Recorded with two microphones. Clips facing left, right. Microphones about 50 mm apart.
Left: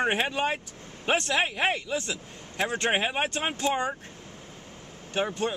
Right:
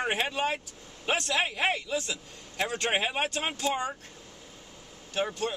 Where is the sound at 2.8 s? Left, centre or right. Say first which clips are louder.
Left 2 dB; centre.